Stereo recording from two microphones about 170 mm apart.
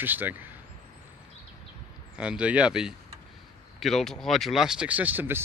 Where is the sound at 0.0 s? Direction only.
10° right (ahead or behind).